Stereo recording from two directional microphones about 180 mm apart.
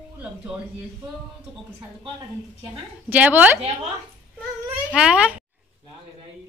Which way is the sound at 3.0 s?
10° right (ahead or behind).